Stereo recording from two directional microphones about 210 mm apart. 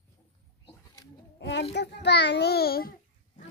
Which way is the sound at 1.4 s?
55° left (ahead or behind).